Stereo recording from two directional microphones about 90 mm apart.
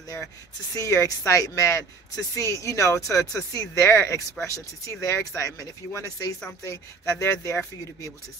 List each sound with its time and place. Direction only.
0.7 s speech: 35° left (ahead or behind)